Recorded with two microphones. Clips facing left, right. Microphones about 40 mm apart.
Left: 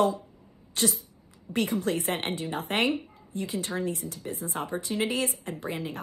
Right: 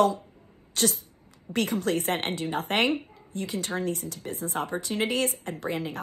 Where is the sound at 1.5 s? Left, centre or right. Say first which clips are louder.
Right 1 dB; right.